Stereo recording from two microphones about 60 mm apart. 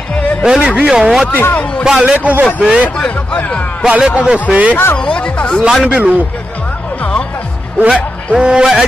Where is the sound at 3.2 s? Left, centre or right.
Left.